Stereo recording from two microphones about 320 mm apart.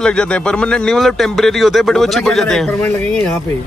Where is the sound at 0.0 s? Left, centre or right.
Centre.